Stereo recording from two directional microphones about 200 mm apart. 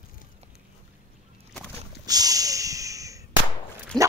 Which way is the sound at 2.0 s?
20° right (ahead or behind).